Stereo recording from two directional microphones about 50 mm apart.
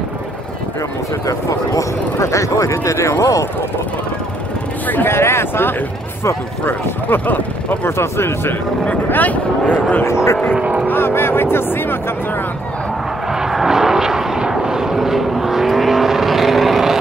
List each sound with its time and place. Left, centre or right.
1.2 s speech: left
5.0 s speech: left
6.6 s speech: left
7.8 s speech: left
9.1 s speech: left
10.5 s speech: right
10.9 s speech: left
13.3 s vehicle: centre